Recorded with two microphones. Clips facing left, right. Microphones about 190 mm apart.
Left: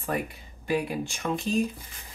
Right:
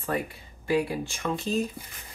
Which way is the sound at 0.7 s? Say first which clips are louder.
Right 2 dB; 15° left (ahead or behind).